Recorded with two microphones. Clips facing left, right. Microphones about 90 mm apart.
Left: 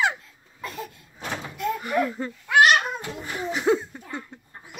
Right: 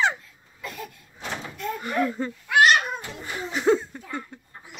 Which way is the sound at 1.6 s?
5° left (ahead or behind).